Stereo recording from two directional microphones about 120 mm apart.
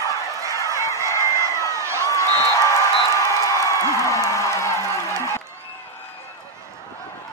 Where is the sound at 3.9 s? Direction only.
25° left (ahead or behind).